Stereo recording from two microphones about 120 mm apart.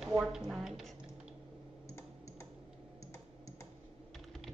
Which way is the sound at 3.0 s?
25° left (ahead or behind).